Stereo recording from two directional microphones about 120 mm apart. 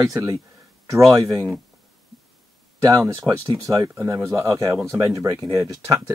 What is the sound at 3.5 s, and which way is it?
Speech, 30° right (ahead or behind).